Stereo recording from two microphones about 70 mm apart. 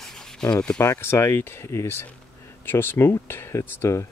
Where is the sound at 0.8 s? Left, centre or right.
Left.